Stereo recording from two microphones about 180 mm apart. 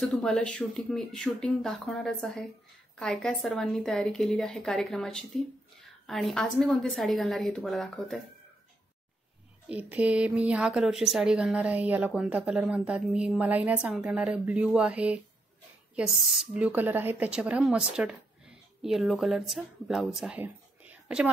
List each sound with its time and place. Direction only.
0.0 s a woman's voice: centre (ahead or behind)
9.7 s a woman's voice: 10° right (ahead or behind)